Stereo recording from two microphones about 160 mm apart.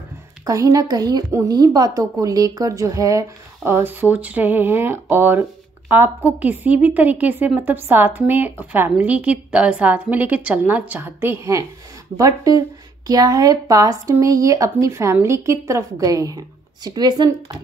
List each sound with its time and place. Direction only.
0.5 s a woman's voice: 20° right (ahead or behind)